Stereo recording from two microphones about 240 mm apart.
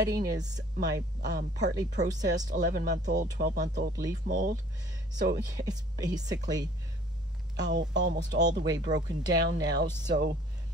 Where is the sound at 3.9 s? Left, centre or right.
Centre.